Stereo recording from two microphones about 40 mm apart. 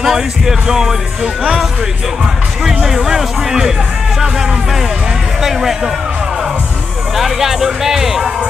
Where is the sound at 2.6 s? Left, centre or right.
Centre.